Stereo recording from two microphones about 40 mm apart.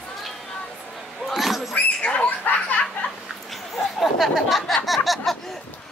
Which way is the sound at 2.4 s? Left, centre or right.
Left.